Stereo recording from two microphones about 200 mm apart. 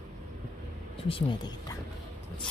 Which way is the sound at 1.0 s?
25° left (ahead or behind).